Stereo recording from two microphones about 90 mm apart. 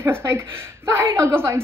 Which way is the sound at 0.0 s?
30° right (ahead or behind).